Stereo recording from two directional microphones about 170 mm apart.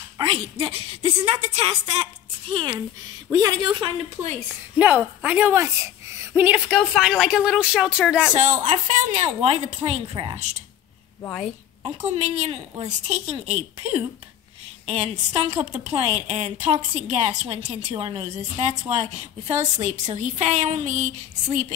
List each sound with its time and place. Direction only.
0.2 s a woman's voice: 30° right (ahead or behind)
3.3 s speech: 20° right (ahead or behind)
4.7 s a woman's voice: 10° right (ahead or behind)
8.4 s a woman's voice: 45° right (ahead or behind)
11.2 s a woman's voice: 10° left (ahead or behind)
12.0 s a woman's voice: 40° right (ahead or behind)